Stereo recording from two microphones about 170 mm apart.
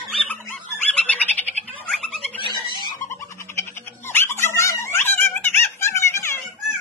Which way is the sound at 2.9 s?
15° left (ahead or behind).